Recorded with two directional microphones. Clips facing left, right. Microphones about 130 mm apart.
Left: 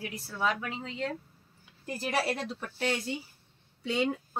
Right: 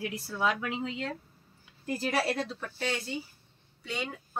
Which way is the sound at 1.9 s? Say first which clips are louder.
Right 1 dB; 10° left (ahead or behind).